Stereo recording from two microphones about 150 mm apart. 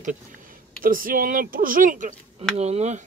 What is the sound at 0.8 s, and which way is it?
Speech, 70° right (ahead or behind).